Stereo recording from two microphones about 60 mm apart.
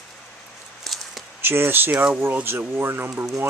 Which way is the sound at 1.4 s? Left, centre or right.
Right.